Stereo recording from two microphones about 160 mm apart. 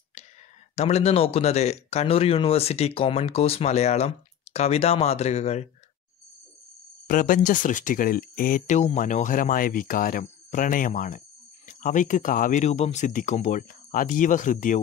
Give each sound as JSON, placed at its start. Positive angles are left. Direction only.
{"t": 0.7, "sound": "speech", "side_deg": 40}
{"t": 7.1, "sound": "speech", "side_deg": 55}